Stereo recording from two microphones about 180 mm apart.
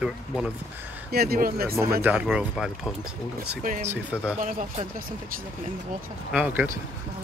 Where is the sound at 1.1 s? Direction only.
60° right (ahead or behind).